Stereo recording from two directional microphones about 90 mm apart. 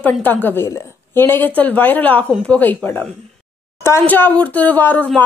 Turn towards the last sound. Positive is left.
turn(degrees=20)  # may be behind; listen again after turning